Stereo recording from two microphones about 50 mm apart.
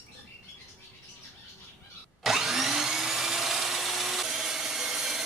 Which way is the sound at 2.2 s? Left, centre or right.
Centre.